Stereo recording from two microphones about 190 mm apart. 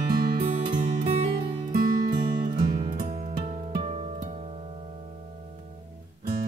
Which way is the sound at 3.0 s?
40° right (ahead or behind).